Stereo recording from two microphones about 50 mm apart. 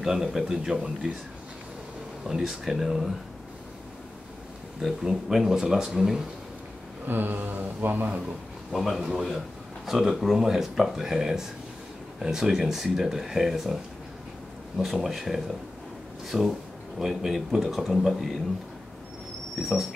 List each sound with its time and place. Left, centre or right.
0.0 s speech: centre
0.7 s speech: right
2.2 s speech: centre
5.0 s speech: centre
7.1 s mantra: right
8.7 s a man's voice: centre
14.8 s a man's voice: centre
19.6 s a man's voice: centre